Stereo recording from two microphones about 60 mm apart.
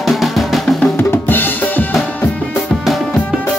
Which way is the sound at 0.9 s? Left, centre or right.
Left.